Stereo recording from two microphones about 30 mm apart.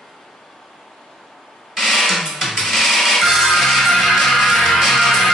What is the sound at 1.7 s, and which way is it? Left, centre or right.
Music, centre.